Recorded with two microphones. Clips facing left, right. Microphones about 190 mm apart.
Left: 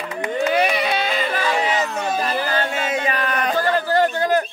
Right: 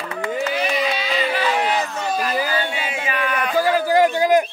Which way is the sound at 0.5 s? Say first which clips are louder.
Left 2 dB; 60° left (ahead or behind).